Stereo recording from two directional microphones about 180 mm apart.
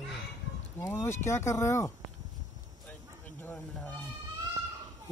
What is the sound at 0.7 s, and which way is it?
Speech, 15° left (ahead or behind).